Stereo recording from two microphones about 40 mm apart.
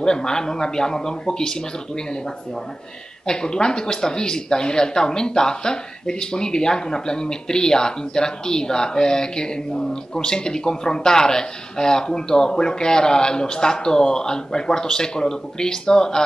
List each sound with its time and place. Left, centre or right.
0.0 s speech: centre
3.3 s speech: centre